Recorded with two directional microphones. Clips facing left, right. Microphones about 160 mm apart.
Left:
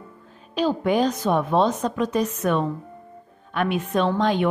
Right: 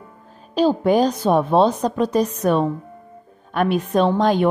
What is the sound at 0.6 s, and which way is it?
A woman's voice, 35° right (ahead or behind).